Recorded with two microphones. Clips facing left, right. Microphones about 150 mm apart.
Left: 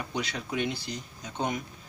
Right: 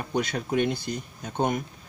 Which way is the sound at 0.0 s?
50° right (ahead or behind).